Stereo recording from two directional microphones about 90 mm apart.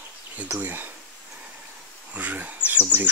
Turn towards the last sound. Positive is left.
turn(degrees=-20)  # may be behind; listen again after turning